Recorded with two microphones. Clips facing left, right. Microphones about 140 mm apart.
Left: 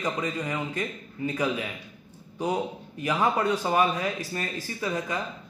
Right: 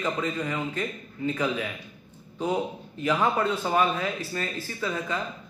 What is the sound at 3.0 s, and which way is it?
Speech, 15° left (ahead or behind).